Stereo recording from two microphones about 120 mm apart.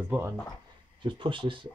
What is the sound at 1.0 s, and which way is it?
Speech, 45° right (ahead or behind).